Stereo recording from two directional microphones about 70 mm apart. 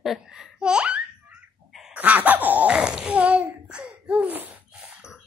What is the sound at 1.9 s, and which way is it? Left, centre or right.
Laughter, right.